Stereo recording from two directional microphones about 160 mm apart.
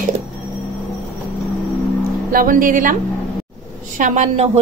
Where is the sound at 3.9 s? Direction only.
50° right (ahead or behind).